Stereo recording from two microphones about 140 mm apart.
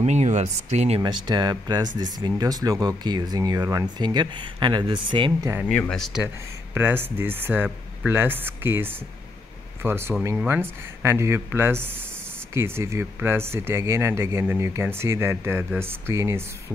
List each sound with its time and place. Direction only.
0.0 s speech: 55° right (ahead or behind)
1.0 s speech: 30° right (ahead or behind)
5.4 s speech: 15° right (ahead or behind)
5.7 s speech: 5° left (ahead or behind)
6.2 s speech: 15° right (ahead or behind)